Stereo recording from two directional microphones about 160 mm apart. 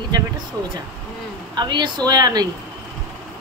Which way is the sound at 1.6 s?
30° right (ahead or behind).